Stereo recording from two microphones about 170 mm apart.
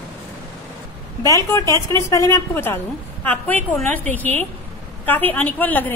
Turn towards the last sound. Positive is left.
turn(degrees=10)  # may be behind; listen again after turning